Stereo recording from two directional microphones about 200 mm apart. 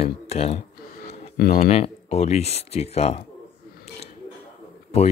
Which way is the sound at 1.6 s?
30° left (ahead or behind).